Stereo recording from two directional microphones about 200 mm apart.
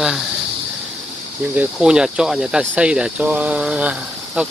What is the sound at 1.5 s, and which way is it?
Speech, 5° right (ahead or behind).